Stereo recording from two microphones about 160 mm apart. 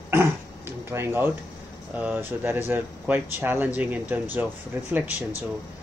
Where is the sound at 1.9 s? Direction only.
10° right (ahead or behind).